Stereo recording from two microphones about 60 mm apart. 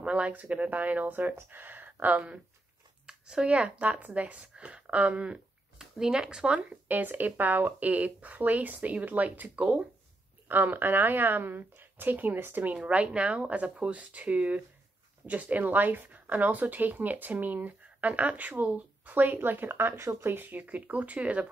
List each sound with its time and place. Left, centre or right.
0.0 s speech: right
3.1 s speech: centre
10.5 s speech: right
12.7 s speech: right